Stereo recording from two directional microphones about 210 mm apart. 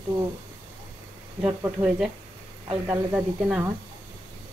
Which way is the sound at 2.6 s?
15° right (ahead or behind).